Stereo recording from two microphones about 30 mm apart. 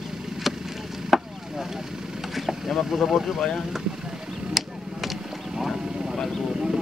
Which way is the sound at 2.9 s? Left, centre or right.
Centre.